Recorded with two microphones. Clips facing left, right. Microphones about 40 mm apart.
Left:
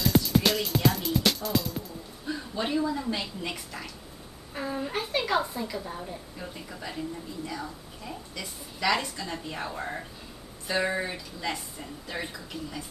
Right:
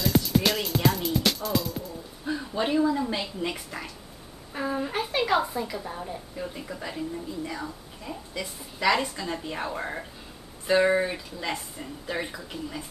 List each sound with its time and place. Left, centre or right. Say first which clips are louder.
0.0 s music: even; centre
2.2 s a woman's voice: right 4 dB; centre
3.5 s speech: right 2 dB; right
4.6 s a woman's voice: right 3 dB; centre
8.7 s a woman's voice: right 3 dB; centre